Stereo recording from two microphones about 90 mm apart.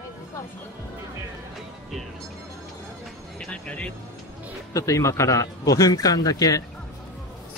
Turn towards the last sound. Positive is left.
turn(degrees=40)  # may be behind; listen again after turning